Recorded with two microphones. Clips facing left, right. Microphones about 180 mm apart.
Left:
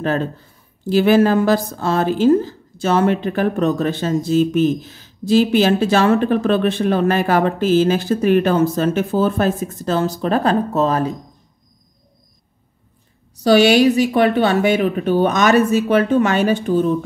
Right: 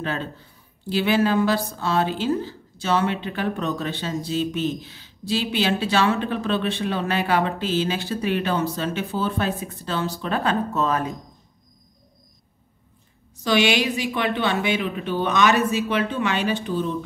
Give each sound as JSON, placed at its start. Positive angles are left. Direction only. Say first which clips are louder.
{"t": 0.0, "sound": "a woman's voice", "louder": "left 8 dB", "side_deg": 45}
{"t": 13.4, "sound": "a woman's voice", "louder": "left 9 dB", "side_deg": 40}